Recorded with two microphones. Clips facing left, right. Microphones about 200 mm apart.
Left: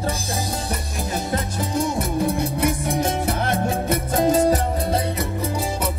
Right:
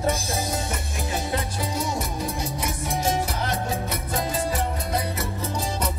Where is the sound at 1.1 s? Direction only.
45° left (ahead or behind).